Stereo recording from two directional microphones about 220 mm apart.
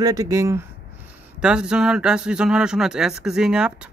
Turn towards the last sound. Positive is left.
turn(degrees=-5)  # may be behind; listen again after turning